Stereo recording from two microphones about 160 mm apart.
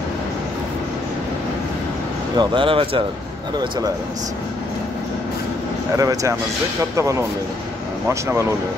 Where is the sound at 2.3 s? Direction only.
30° right (ahead or behind).